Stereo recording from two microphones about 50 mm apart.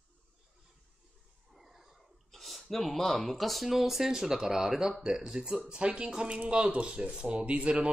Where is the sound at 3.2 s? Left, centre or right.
Centre.